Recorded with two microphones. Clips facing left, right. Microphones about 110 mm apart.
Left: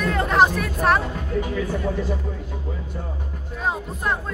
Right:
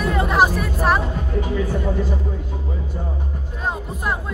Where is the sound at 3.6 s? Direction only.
5° right (ahead or behind).